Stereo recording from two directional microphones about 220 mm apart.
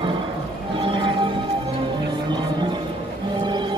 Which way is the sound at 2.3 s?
20° right (ahead or behind).